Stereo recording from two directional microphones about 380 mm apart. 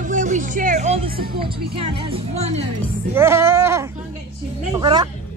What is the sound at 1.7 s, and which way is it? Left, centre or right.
Speech, centre.